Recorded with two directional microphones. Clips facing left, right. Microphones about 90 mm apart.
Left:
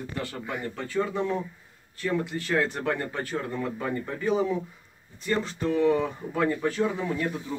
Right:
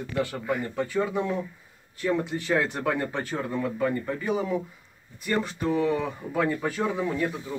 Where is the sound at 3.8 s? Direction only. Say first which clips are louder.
Right 2 dB; centre (ahead or behind).